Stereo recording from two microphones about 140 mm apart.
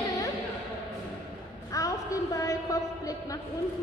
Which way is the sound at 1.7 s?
25° left (ahead or behind).